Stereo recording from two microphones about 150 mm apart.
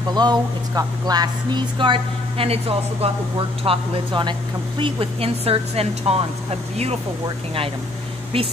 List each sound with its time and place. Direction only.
0.1 s speech: 30° right (ahead or behind)